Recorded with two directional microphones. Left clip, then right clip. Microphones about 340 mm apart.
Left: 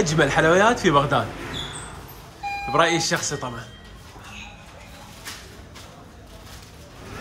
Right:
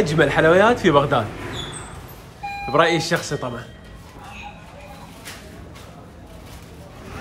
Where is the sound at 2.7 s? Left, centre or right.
Centre.